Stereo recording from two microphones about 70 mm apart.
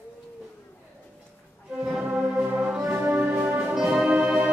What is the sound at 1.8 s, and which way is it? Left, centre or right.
Music, centre.